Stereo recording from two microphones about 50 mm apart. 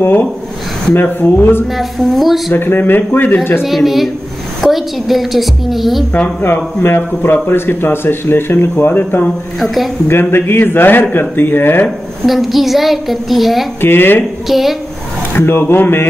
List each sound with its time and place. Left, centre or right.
0.0 s a man's voice: left
1.8 s a woman's voice: centre
2.5 s a man's voice: left
3.6 s a woman's voice: centre
6.4 s a man's voice: left
12.3 s a woman's voice: centre
13.7 s a man's voice: left
14.5 s a woman's voice: centre
15.3 s a man's voice: left